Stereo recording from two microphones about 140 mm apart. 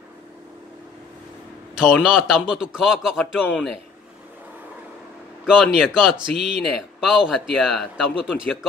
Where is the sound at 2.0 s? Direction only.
5° right (ahead or behind).